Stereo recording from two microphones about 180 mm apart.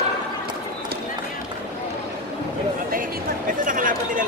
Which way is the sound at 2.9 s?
50° right (ahead or behind).